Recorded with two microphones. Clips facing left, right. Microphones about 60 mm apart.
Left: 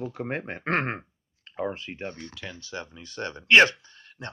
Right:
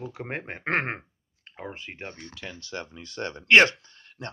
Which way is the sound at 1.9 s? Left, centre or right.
Right.